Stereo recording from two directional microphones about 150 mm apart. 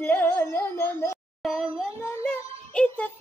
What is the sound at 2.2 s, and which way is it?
Music, 5° left (ahead or behind).